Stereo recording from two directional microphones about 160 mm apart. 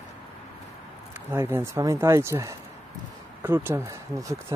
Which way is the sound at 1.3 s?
15° right (ahead or behind).